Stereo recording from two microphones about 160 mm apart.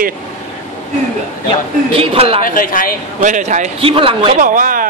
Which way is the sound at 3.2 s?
50° right (ahead or behind).